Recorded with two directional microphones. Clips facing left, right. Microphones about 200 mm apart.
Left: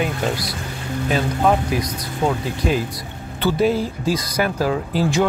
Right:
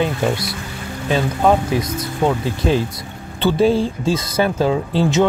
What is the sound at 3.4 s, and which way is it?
Speech, 25° right (ahead or behind).